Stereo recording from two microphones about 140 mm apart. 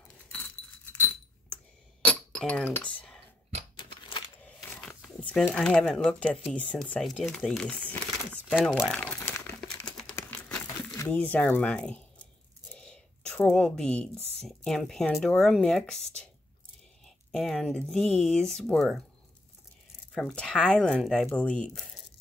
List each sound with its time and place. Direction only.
2.0 s coin: 5° left (ahead or behind)
4.7 s a sound: 5° left (ahead or behind)
5.5 s speech: 5° left (ahead or behind)
8.9 s crumpling: 10° left (ahead or behind)
11.1 s speech: 10° left (ahead or behind)
12.7 s a sound: 5° left (ahead or behind)
14.4 s speech: centre (ahead or behind)
20.2 s speech: 5° left (ahead or behind)